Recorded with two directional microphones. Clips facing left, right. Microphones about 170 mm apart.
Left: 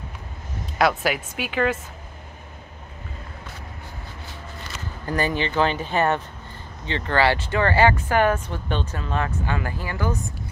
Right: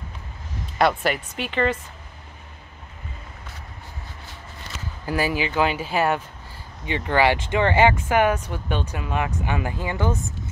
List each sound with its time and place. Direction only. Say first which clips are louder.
0.7 s speech: even; 5° left (ahead or behind)
5.0 s speech: even; 10° right (ahead or behind)